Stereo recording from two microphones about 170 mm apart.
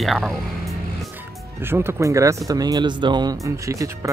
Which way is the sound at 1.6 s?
15° right (ahead or behind).